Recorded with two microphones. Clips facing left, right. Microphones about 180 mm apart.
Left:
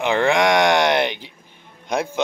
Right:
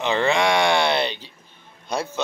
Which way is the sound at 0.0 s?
15° left (ahead or behind).